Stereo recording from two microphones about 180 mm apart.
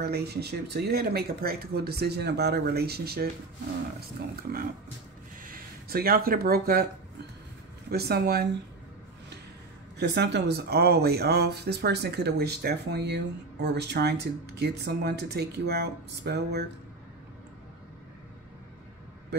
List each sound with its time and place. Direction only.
0.0 s speech: 60° right (ahead or behind)
5.4 s speech: 55° right (ahead or behind)
7.9 s speech: 60° right (ahead or behind)
9.9 s speech: 70° right (ahead or behind)